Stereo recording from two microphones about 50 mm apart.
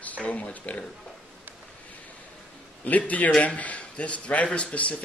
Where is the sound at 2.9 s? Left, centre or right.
Left.